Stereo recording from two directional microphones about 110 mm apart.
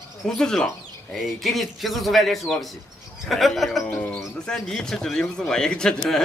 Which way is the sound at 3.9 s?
10° left (ahead or behind).